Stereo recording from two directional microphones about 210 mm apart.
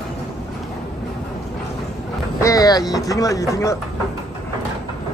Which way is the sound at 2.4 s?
15° left (ahead or behind).